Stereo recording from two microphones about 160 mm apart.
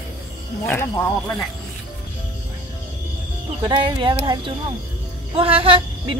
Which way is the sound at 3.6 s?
30° right (ahead or behind).